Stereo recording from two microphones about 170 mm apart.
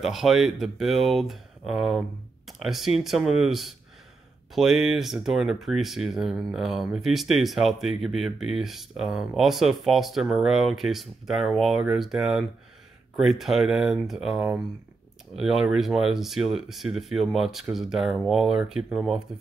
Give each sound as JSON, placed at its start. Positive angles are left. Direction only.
{"t": 0.0, "sound": "speech", "side_deg": 0}